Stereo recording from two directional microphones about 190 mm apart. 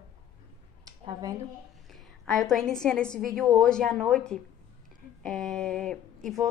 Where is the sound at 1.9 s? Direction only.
Centre (ahead or behind).